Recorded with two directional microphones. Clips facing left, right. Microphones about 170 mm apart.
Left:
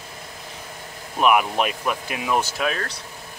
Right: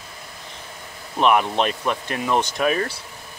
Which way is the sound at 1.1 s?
10° left (ahead or behind).